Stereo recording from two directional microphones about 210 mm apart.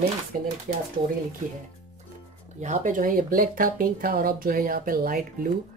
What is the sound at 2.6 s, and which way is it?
Speech, 35° right (ahead or behind).